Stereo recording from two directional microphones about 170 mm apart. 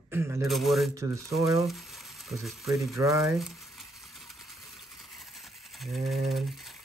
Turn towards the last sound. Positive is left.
turn(degrees=0)  # may be behind; listen again after turning